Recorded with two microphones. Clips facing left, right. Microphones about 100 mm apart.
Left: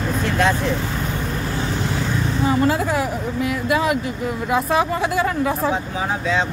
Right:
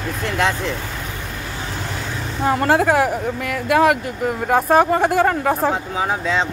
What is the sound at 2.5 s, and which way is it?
Speech, 60° right (ahead or behind).